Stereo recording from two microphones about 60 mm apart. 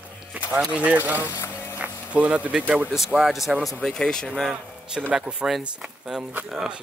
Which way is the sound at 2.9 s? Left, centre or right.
Centre.